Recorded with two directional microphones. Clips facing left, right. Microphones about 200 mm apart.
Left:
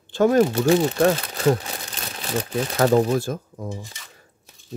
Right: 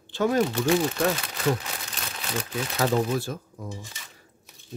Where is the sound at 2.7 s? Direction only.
50° left (ahead or behind).